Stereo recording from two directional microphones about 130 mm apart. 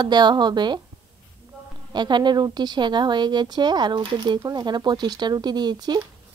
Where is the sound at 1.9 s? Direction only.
35° right (ahead or behind).